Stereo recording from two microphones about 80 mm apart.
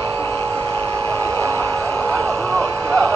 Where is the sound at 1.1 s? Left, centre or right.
Left.